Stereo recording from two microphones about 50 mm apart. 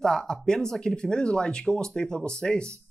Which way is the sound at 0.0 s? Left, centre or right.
Centre.